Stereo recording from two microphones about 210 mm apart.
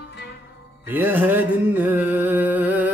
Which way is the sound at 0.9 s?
10° right (ahead or behind).